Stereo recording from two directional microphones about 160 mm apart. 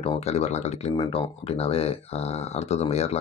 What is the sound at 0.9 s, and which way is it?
Speech, 35° left (ahead or behind).